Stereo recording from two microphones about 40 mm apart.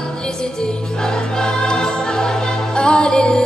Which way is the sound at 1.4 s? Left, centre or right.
Centre.